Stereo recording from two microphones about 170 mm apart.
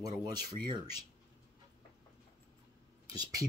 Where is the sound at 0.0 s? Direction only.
25° right (ahead or behind).